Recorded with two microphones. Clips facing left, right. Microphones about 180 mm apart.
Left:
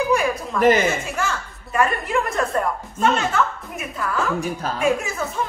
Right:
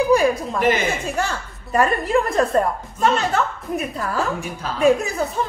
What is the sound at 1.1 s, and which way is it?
A woman's voice, 35° right (ahead or behind).